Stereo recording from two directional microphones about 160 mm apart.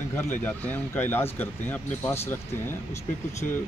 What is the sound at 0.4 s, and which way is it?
Speech, 10° left (ahead or behind).